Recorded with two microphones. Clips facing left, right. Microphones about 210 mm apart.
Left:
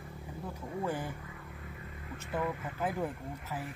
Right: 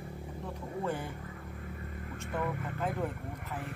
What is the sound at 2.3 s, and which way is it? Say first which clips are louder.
Speech: even; 5° left (ahead or behind).